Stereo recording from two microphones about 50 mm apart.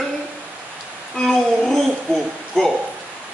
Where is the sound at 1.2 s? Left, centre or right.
Centre.